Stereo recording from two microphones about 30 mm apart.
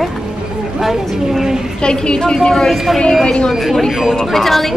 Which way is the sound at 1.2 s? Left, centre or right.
Centre.